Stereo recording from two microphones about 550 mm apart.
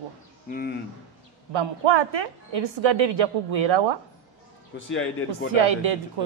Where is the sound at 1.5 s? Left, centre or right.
Right.